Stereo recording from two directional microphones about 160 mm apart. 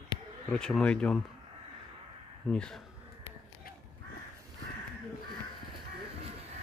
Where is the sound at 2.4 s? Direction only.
5° left (ahead or behind).